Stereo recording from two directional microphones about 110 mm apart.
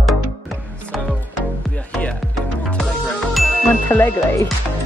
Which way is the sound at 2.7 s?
10° left (ahead or behind).